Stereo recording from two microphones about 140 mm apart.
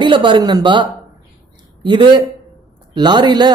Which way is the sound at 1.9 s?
35° right (ahead or behind).